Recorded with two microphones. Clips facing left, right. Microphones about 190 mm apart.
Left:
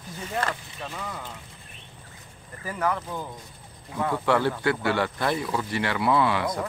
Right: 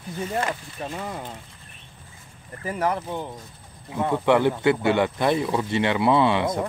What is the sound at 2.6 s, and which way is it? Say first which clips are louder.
Speech: right 3 dB; 25° right (ahead or behind).